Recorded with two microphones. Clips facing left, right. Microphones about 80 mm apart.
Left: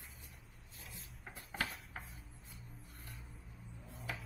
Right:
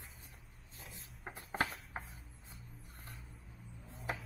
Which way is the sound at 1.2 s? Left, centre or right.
Right.